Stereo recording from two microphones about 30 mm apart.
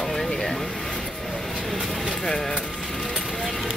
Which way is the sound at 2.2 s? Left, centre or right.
Centre.